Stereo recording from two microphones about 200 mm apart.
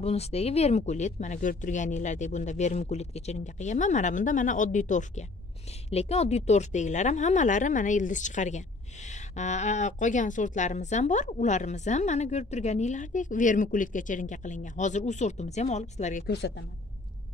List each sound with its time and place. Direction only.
0.0 s speech: 30° left (ahead or behind)
16.3 s a woman's voice: 60° left (ahead or behind)